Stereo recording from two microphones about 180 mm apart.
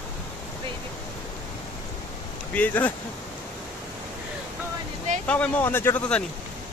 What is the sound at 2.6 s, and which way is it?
Speech, 10° left (ahead or behind).